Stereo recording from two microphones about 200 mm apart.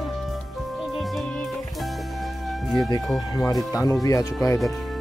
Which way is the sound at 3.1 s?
15° left (ahead or behind).